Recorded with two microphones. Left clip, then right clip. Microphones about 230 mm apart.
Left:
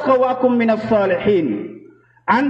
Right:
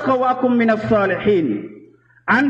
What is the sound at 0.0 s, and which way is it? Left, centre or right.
A man's voice, right.